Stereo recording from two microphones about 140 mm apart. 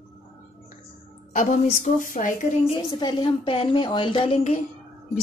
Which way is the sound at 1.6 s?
65° left (ahead or behind).